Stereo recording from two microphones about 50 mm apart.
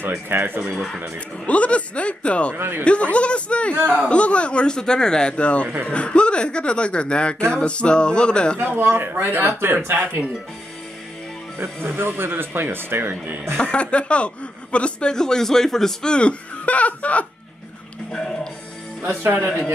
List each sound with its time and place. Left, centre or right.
0.3 s speech: right
0.7 s speech: centre
1.4 s speech: left
2.5 s speech: right
2.8 s speech: left
3.7 s speech: right
4.1 s speech: left
8.5 s speech: right
9.5 s speech: right
11.5 s speech: right
13.6 s speech: left
18.1 s music: centre
19.0 s speech: right